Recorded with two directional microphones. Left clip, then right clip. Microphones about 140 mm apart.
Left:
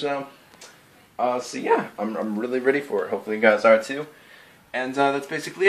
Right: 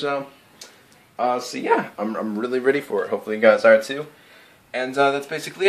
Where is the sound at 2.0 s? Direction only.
25° right (ahead or behind).